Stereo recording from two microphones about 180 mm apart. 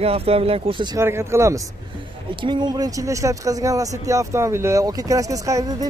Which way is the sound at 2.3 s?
25° right (ahead or behind).